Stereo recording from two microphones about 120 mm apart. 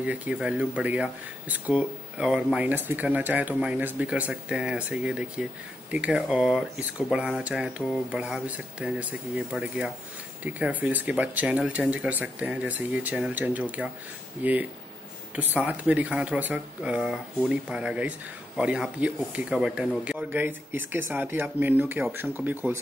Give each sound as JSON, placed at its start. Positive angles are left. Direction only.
{"t": 0.0, "sound": "speech", "side_deg": -10}